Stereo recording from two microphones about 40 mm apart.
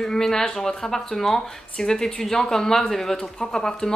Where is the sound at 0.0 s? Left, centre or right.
Centre.